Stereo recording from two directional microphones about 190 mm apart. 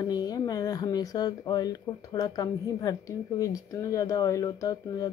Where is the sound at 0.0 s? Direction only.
20° left (ahead or behind).